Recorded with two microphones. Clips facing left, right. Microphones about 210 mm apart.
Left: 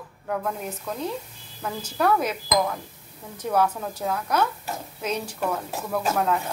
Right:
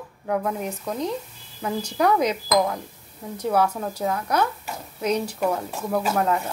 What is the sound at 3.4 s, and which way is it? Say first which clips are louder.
A woman's voice: right 1 dB; 10° right (ahead or behind).